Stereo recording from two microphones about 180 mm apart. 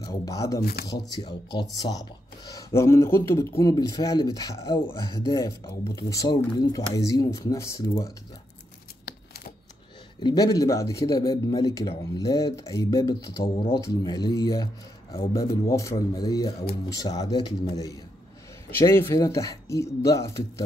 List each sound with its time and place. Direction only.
0.0 s speech: 20° left (ahead or behind)
0.6 s speech: 60° left (ahead or behind)
1.1 s speech: 25° left (ahead or behind)
9.0 s a sound: 60° left (ahead or behind)
10.2 s speech: 20° left (ahead or behind)